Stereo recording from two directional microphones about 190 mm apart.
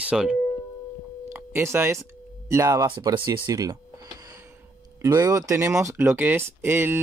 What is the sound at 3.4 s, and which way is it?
Tick-tock, 20° right (ahead or behind).